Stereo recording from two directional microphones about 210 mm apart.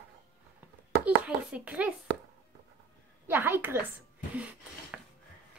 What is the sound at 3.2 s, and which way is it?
Speech, 10° right (ahead or behind).